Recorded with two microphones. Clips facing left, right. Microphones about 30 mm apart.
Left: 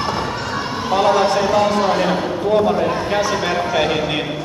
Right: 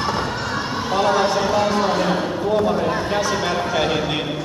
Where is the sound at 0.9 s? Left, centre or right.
Centre.